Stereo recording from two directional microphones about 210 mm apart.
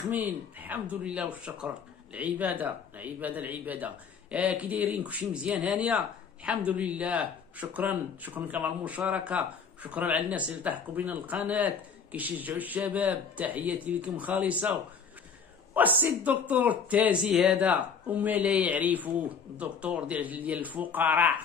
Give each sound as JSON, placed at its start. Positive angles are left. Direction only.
{"t": 0.1, "sound": "speech", "side_deg": -10}